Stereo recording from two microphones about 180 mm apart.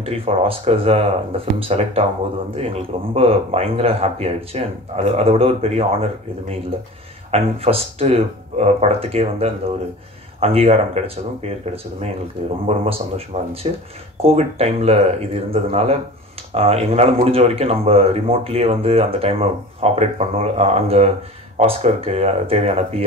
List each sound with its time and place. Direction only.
0.0 s speech: 35° right (ahead or behind)
7.2 s speech: 35° right (ahead or behind)